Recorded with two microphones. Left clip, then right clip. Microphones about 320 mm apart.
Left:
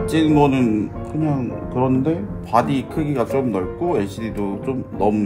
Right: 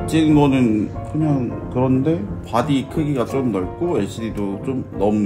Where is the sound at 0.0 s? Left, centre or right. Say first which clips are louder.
Even; centre.